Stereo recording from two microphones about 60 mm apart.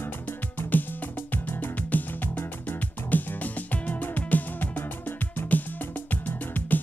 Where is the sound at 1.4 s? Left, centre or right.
Left.